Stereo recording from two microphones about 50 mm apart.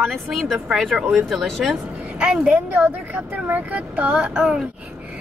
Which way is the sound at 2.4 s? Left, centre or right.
Right.